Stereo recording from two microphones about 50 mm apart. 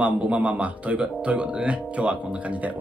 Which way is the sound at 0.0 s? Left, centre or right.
Right.